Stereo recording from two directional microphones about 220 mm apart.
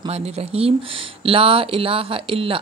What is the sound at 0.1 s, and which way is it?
Speech, 25° right (ahead or behind).